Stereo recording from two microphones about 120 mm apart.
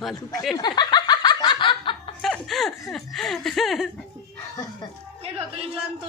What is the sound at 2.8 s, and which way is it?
Speech, 5° left (ahead or behind).